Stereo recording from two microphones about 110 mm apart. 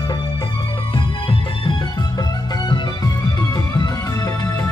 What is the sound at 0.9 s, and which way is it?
Music, 50° left (ahead or behind).